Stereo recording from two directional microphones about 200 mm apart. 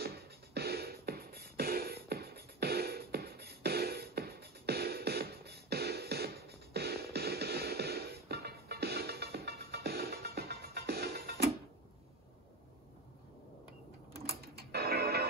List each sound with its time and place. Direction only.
0.6 s music: 50° right (ahead or behind)
14.3 s music: 50° right (ahead or behind)